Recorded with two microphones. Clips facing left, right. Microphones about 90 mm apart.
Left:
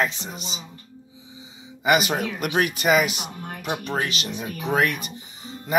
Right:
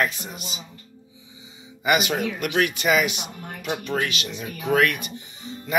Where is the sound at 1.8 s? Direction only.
40° left (ahead or behind).